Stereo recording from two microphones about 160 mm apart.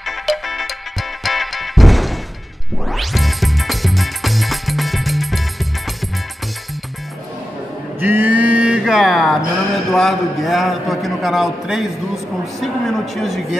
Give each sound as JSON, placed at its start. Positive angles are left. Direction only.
{"t": 0.0, "sound": "music", "side_deg": 0}
{"t": 8.0, "sound": "music", "side_deg": -10}
{"t": 9.9, "sound": "a man's voice", "side_deg": 0}